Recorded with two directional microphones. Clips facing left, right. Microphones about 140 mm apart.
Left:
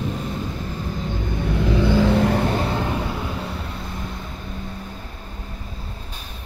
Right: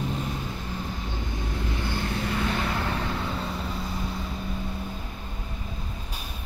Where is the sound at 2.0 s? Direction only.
90° left.